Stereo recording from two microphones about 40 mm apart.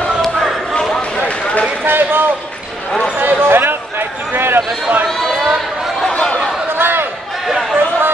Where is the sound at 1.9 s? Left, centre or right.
Right.